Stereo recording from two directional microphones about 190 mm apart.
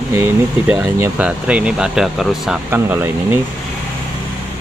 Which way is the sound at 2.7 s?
10° right (ahead or behind).